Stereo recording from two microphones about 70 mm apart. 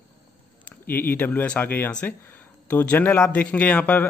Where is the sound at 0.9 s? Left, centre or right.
Left.